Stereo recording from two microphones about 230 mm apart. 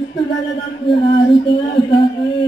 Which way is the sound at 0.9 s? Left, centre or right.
Left.